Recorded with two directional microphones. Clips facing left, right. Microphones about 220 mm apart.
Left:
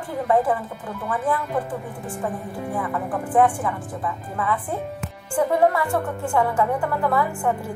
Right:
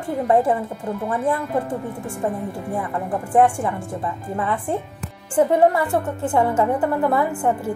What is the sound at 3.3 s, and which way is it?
A woman's voice, 25° right (ahead or behind).